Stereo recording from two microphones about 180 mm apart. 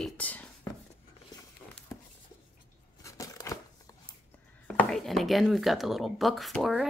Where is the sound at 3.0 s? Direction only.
20° left (ahead or behind).